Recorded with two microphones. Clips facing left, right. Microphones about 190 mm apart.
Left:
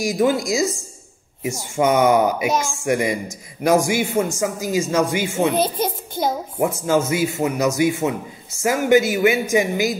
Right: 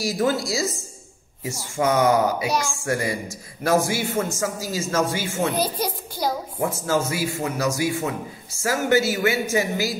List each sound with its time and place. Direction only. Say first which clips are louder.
0.0 s a man's voice: left 4 dB; 15° left (ahead or behind)